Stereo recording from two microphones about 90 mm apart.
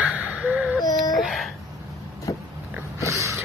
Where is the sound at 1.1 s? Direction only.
Centre (ahead or behind).